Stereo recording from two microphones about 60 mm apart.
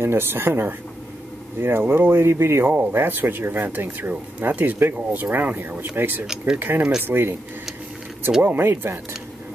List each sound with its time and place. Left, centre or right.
0.0 s speech: right
6.2 s speech: centre
6.6 s speech: right
8.4 s speech: right